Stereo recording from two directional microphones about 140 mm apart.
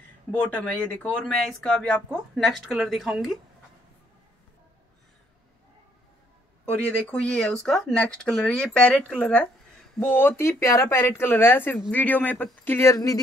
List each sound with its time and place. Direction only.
0.6 s speech: 10° left (ahead or behind)
7.1 s speech: 10° left (ahead or behind); by 13.2 s 25° left (ahead or behind)